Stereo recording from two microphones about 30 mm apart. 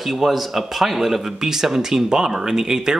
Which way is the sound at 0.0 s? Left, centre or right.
Centre.